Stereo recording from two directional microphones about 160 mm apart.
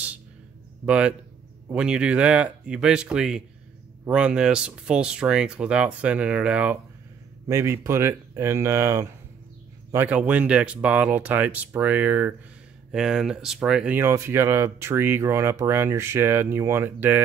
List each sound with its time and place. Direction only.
0.8 s speech: 5° right (ahead or behind)
10.0 s speech: 10° right (ahead or behind)